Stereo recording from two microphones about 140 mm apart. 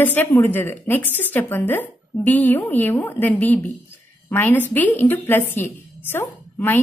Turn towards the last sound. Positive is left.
turn(degrees=15)  # may be behind; listen again after turning